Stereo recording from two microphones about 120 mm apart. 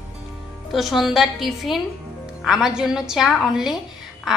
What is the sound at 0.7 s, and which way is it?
A woman's voice, centre (ahead or behind).